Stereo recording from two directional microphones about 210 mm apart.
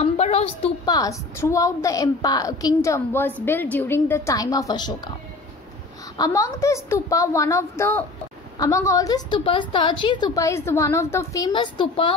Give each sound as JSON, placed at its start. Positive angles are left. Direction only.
{"t": 0.0, "sound": "a sound", "side_deg": 30}
{"t": 0.8, "sound": "a woman's voice", "side_deg": 15}
{"t": 6.1, "sound": "a woman's voice", "side_deg": 15}